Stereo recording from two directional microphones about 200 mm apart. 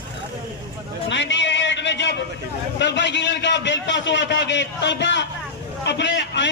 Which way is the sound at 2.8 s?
60° left (ahead or behind).